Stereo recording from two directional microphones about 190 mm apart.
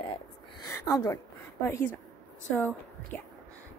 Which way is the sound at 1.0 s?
15° left (ahead or behind).